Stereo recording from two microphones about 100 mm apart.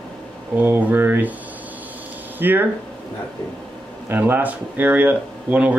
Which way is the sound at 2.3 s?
20° right (ahead or behind).